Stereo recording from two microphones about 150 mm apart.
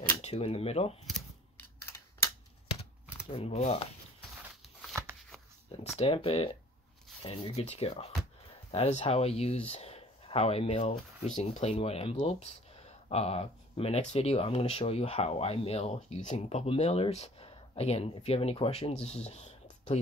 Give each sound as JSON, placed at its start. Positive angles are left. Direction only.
{"t": 0.2, "sound": "speech", "side_deg": 40}
{"t": 1.6, "sound": "a sound", "side_deg": 15}
{"t": 3.3, "sound": "speech", "side_deg": 45}
{"t": 5.9, "sound": "speech", "side_deg": 40}